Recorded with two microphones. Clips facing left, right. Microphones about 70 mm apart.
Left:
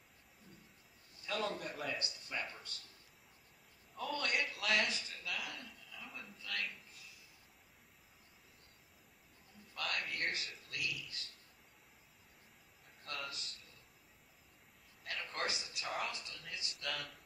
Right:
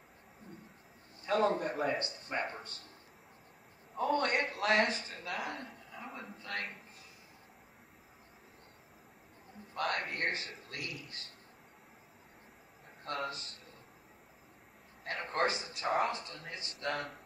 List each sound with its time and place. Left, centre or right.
1.2 s a man's voice: right
4.1 s a sound: right
9.8 s a man's voice: right
11.1 s a sound: right
13.3 s a man's voice: right
15.0 s a man's voice: right